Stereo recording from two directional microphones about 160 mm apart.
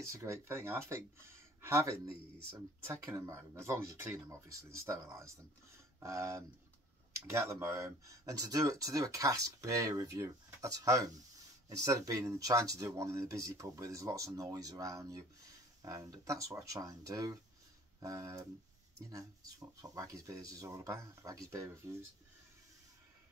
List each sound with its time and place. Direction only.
0.0 s speech: 20° right (ahead or behind)